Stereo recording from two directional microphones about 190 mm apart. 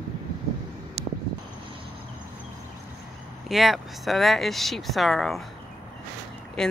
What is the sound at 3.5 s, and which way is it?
Speech, centre (ahead or behind).